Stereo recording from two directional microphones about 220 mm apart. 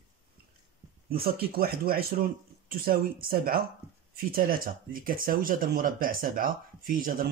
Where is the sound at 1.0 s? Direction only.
45° right (ahead or behind).